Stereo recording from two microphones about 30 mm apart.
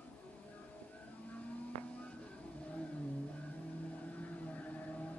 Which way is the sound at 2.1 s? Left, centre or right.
Left.